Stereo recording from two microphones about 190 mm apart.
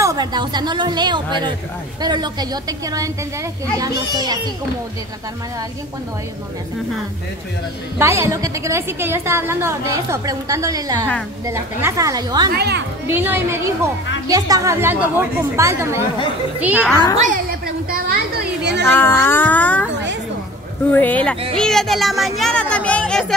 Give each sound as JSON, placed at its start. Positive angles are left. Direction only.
{"t": 0.0, "sound": "a woman's voice", "side_deg": -20}
{"t": 8.0, "sound": "a woman's voice", "side_deg": -15}
{"t": 12.5, "sound": "speech", "side_deg": -60}
{"t": 13.1, "sound": "a woman's voice", "side_deg": -10}
{"t": 16.8, "sound": "speech", "side_deg": 15}
{"t": 17.2, "sound": "a woman's voice", "side_deg": -50}
{"t": 18.9, "sound": "speech", "side_deg": 10}
{"t": 20.9, "sound": "speech", "side_deg": 10}